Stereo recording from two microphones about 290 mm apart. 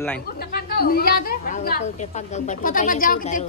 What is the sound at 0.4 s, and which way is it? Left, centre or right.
A woman's voice, left.